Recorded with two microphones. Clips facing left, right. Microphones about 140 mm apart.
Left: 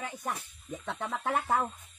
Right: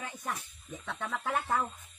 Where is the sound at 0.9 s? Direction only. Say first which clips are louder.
Left 2 dB; 25° left (ahead or behind).